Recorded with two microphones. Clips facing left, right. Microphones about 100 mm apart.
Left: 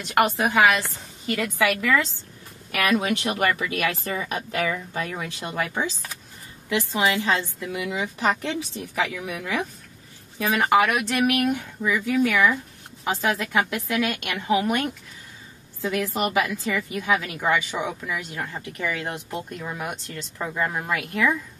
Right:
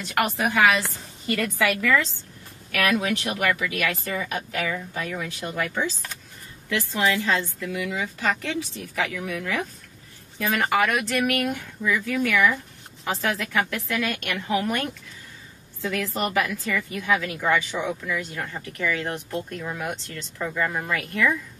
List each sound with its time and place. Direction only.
0.1 s a woman's voice: 20° left (ahead or behind)
2.7 s speech: 20° left (ahead or behind); by 5.0 s 35° left (ahead or behind)
5.4 s a woman's voice: 20° left (ahead or behind)
10.7 s a woman's voice: 15° left (ahead or behind)
15.8 s speech: 15° left (ahead or behind)